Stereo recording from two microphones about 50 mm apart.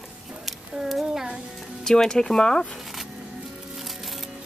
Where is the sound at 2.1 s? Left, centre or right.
Centre.